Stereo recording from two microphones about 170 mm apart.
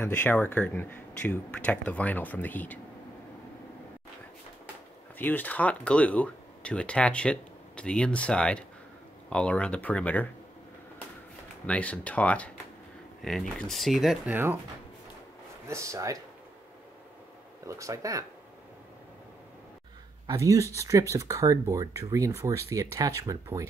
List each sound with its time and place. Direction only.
0.0 s speech: 10° left (ahead or behind)
5.2 s speech: 10° left (ahead or behind)
11.6 s speech: 5° left (ahead or behind)
14.3 s speech: 10° right (ahead or behind)
15.7 s speech: 15° right (ahead or behind)
17.6 s speech: 20° right (ahead or behind)
20.2 s speech: 20° right (ahead or behind)